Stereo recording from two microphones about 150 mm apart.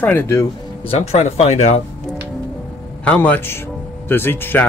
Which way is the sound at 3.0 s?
10° left (ahead or behind).